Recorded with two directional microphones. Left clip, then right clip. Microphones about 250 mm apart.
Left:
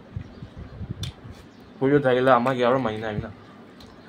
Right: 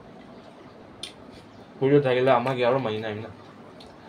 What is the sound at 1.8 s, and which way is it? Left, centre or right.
Speech, centre.